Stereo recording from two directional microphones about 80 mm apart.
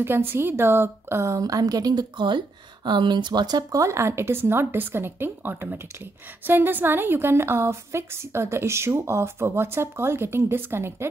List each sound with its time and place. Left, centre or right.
0.0 s a woman's voice: right